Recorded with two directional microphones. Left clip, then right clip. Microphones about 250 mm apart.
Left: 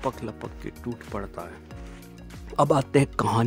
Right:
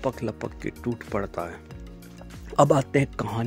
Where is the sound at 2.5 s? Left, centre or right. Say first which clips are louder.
Right 1 dB; centre.